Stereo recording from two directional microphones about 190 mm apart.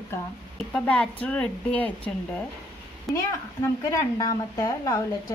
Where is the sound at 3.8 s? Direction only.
20° left (ahead or behind).